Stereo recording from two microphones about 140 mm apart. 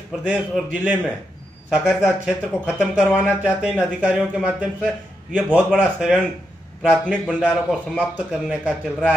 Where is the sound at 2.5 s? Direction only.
20° left (ahead or behind).